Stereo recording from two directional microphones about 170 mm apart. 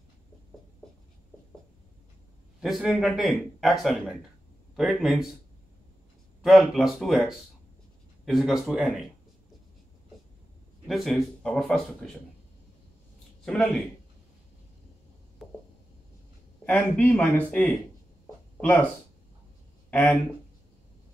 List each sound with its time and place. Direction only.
2.6 s speech: centre (ahead or behind)
6.4 s speech: centre (ahead or behind)
10.9 s speech: centre (ahead or behind)
13.5 s speech: 5° left (ahead or behind)
16.6 s speech: 10° left (ahead or behind)
19.9 s speech: 10° left (ahead or behind)